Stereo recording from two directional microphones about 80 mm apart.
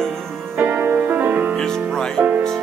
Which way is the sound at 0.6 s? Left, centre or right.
Right.